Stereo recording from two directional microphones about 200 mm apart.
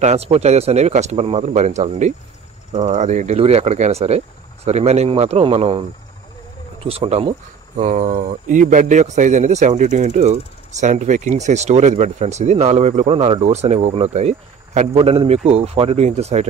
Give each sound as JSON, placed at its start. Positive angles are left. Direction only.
{"t": 0.0, "sound": "speech", "side_deg": -35}